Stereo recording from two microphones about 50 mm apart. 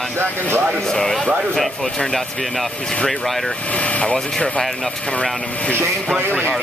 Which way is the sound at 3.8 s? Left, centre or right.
Left.